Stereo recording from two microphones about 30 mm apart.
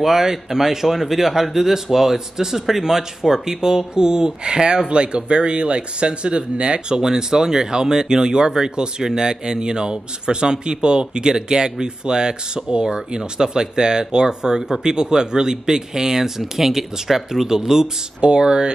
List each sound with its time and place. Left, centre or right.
0.0 s speech: centre; by 7.0 s right
7.0 s speech: right
18.2 s speech: right